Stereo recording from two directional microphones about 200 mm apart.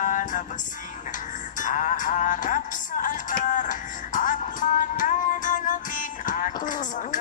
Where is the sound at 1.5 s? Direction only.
40° left (ahead or behind).